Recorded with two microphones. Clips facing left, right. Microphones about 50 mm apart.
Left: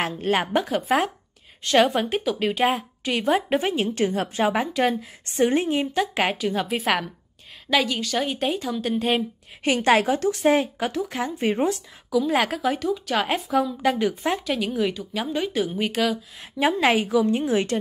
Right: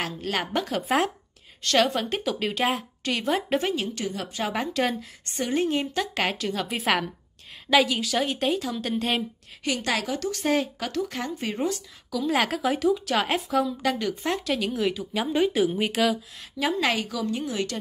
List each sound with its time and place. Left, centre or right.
0.0 s a woman's voice: left
0.7 s speech: centre
1.6 s a woman's voice: centre
3.7 s a woman's voice: left
4.5 s a woman's voice: centre
5.3 s a woman's voice: left
5.6 s a woman's voice: centre
6.7 s speech: centre
9.8 s a woman's voice: left
10.3 s a woman's voice: left
11.3 s a woman's voice: left
12.1 s speech: centre
13.9 s speech: centre
16.5 s a woman's voice: left